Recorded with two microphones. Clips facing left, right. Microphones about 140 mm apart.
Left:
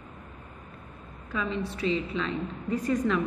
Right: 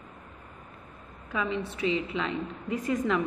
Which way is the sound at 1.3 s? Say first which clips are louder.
Even; 15° right (ahead or behind).